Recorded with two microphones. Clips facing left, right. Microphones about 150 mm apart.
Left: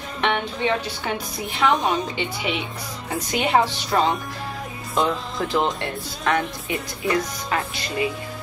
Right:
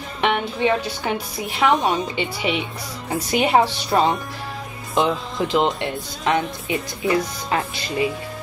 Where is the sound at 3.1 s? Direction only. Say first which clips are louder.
Right 3 dB; 5° right (ahead or behind).